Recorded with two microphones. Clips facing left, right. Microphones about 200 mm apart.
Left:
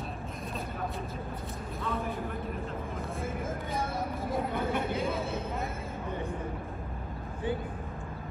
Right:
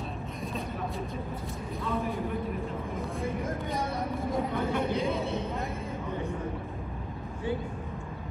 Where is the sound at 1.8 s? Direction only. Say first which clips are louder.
Right 3 dB; centre (ahead or behind).